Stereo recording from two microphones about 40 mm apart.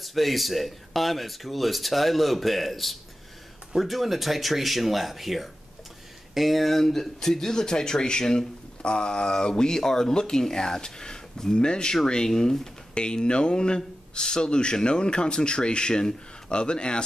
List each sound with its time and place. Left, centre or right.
0.0 s speech: centre; by 12.0 s left
12.3 s speech: centre
12.9 s speech: left